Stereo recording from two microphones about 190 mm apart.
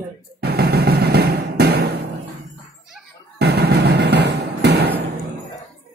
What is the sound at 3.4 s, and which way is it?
Music, 60° right (ahead or behind).